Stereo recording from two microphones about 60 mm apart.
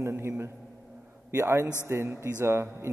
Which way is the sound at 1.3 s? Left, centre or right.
Right.